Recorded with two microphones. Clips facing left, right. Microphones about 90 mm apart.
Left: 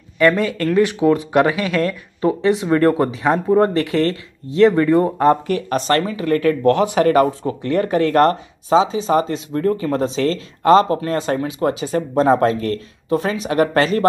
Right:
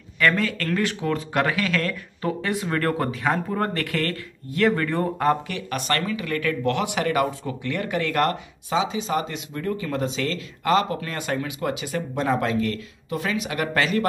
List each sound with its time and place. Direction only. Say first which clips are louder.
0.2 s speech: left 7 dB; 20° left (ahead or behind)
5.3 s speech: left 7 dB; 35° left (ahead or behind)